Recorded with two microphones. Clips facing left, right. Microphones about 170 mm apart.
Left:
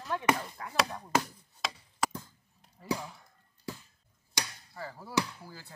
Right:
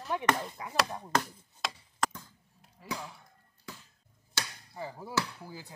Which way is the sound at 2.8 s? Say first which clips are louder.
Left 6 dB; 5° right (ahead or behind).